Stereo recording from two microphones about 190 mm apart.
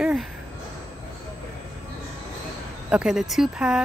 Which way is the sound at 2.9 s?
5° right (ahead or behind).